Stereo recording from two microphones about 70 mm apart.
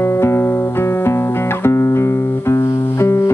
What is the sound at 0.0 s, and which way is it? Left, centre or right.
Music, left.